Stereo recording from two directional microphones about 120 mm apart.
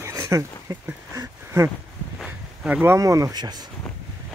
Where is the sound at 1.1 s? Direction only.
25° right (ahead or behind).